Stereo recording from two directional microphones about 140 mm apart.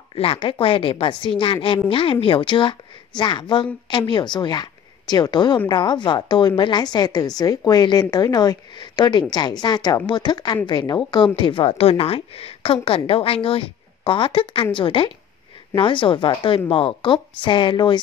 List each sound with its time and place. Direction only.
0.1 s a woman's voice: 40° left (ahead or behind)